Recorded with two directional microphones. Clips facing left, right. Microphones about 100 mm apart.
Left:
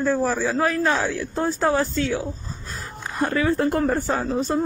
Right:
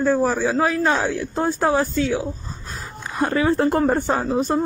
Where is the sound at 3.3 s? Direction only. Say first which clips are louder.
Right 3 dB; 25° right (ahead or behind).